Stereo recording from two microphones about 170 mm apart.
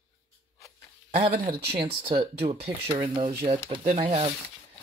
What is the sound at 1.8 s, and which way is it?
Speech, 35° right (ahead or behind).